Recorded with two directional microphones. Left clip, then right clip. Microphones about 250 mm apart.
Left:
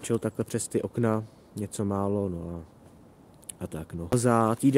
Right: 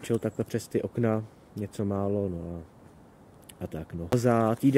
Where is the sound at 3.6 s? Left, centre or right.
Centre.